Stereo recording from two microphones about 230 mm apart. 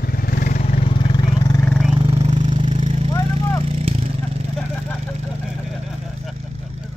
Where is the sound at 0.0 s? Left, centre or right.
Left.